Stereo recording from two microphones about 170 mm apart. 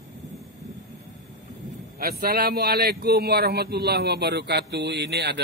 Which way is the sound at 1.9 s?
60° right (ahead or behind).